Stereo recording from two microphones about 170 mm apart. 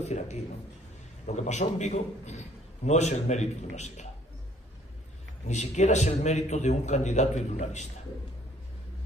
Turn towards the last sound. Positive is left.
turn(degrees=40)  # may be behind; listen again after turning